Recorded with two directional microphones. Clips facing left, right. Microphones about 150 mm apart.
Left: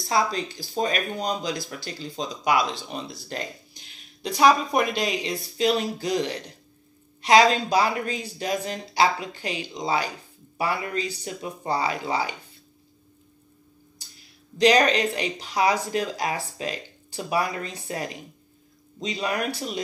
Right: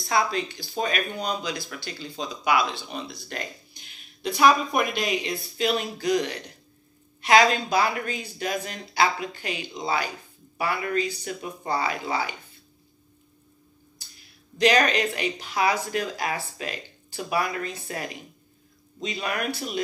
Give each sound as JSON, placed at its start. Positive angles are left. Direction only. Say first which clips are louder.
{"t": 0.1, "sound": "speech", "louder": "even", "side_deg": 40}
{"t": 14.6, "sound": "speech", "louder": "left 2 dB", "side_deg": 35}